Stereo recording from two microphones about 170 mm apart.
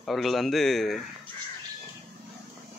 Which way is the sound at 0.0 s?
Centre (ahead or behind).